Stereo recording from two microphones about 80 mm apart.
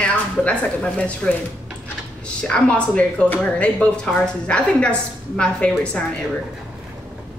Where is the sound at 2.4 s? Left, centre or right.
Centre.